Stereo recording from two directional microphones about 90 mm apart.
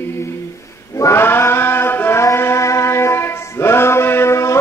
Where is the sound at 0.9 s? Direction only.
30° left (ahead or behind).